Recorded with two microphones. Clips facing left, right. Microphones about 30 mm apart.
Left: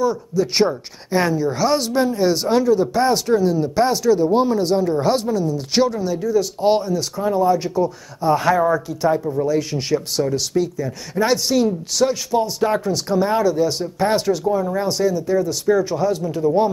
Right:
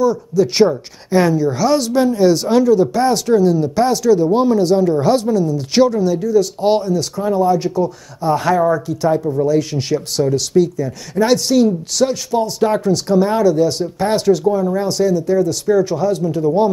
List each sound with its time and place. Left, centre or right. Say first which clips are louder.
0.0 s speech: right 4 dB; centre